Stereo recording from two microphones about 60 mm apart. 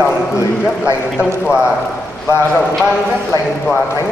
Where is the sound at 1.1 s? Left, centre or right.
Centre.